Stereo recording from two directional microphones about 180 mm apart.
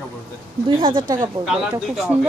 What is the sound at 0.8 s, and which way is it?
Speech, 30° right (ahead or behind).